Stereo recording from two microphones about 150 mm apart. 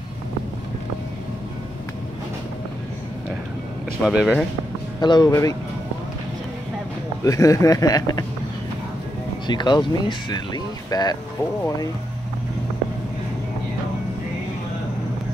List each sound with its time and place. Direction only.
4.0 s speech: 5° right (ahead or behind)
5.0 s speech: 30° left (ahead or behind)
7.2 s speech: 20° left (ahead or behind)
9.5 s speech: 30° left (ahead or behind)